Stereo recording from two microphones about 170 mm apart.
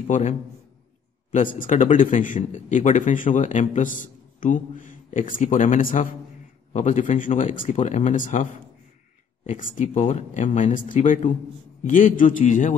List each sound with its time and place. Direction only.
0.1 s speech: 45° left (ahead or behind)
9.5 s speech: 50° left (ahead or behind)